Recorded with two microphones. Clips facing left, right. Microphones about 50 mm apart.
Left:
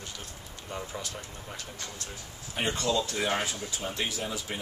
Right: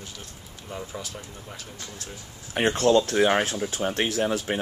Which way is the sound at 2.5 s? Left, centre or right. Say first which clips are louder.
Right 9 dB; right.